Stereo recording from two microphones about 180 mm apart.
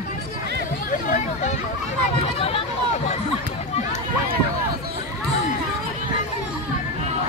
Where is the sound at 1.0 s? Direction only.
45° left (ahead or behind).